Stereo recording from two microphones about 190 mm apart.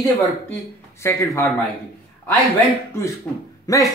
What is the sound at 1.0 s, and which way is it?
Speech, 15° left (ahead or behind).